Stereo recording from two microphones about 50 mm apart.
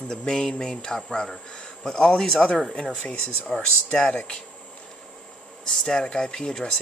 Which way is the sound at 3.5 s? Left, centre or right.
Centre.